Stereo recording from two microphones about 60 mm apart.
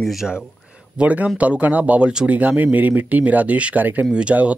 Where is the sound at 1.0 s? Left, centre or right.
Right.